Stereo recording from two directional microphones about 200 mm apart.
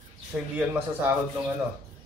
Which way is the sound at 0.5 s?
10° right (ahead or behind).